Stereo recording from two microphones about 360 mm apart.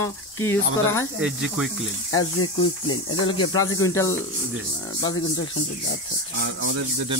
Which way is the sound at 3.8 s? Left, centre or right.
Centre.